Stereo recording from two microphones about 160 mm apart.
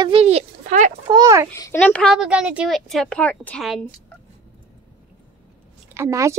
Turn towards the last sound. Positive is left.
turn(degrees=-20)  # may be behind; listen again after turning